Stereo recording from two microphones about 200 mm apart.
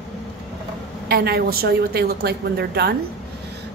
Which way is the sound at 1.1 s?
50° right (ahead or behind).